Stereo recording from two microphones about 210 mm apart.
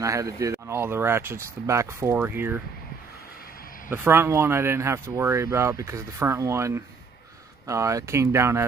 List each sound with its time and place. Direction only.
0.0 s speech: 15° right (ahead or behind)
3.9 s speech: 10° right (ahead or behind)